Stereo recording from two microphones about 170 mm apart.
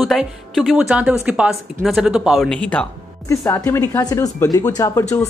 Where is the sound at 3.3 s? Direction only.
20° left (ahead or behind).